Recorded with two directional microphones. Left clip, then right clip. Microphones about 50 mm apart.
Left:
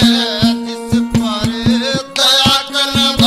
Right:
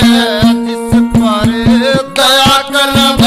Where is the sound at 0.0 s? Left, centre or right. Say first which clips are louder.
Right 4 dB; left.